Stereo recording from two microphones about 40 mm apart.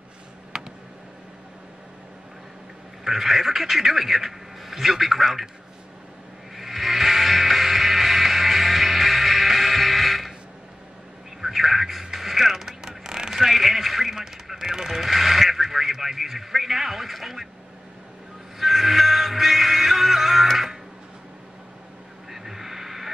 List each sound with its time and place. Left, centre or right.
0.5 s a sound: centre
3.0 s a man's voice: centre
6.5 s music: centre
11.4 s a sound: centre
18.6 s music: centre
22.3 s radio: centre